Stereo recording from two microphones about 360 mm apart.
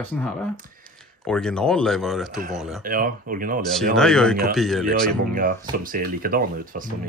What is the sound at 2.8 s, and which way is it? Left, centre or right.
Speech, right.